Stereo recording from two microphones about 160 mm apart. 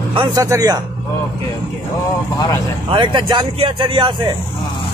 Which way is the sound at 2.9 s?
30° right (ahead or behind).